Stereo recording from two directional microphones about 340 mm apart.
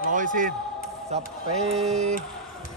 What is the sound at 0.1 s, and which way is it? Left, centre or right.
A man's voice, right.